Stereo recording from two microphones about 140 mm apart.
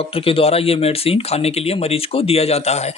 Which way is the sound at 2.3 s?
45° left (ahead or behind).